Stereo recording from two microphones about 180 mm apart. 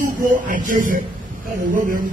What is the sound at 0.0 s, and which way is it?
A man's voice, 45° right (ahead or behind).